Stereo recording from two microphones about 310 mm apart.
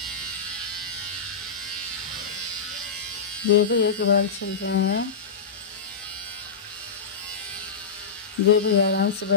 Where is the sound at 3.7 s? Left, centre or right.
Left.